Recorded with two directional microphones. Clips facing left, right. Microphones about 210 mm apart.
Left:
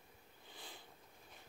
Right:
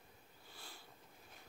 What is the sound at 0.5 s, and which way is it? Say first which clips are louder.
Sniff: left 3 dB; 20° left (ahead or behind).